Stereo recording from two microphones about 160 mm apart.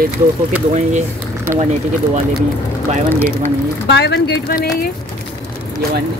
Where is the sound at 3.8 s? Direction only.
90° left.